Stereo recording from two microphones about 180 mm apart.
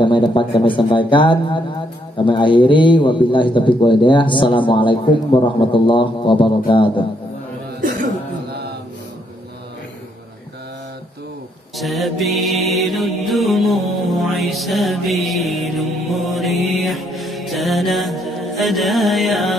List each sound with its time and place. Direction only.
0.0 s a man's voice: 25° left (ahead or behind)
11.7 s mantra: centre (ahead or behind)